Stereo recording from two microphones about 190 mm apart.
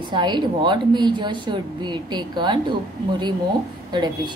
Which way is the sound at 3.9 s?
25° right (ahead or behind).